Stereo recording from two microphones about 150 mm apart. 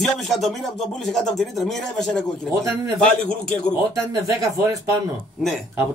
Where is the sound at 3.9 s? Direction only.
20° right (ahead or behind).